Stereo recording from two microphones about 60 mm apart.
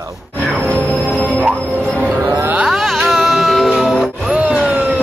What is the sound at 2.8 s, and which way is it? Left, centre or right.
Music, centre.